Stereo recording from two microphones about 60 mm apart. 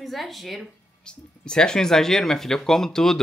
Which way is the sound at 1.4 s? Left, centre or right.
Centre.